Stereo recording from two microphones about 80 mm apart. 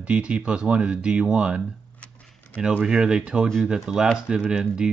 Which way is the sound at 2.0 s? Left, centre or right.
Centre.